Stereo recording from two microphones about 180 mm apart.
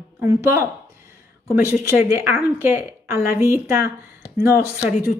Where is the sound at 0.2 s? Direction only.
15° right (ahead or behind).